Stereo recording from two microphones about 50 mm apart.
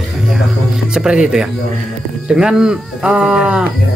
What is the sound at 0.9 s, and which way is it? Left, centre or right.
Speech, centre.